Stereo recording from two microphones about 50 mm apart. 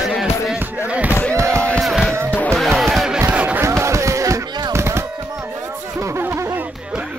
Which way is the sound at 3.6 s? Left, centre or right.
Right.